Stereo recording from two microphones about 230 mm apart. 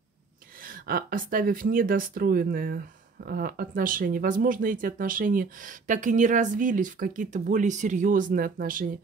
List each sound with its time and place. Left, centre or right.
0.6 s speech: right